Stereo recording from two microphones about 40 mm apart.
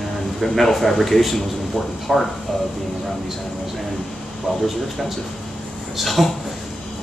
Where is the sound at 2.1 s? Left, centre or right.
Centre.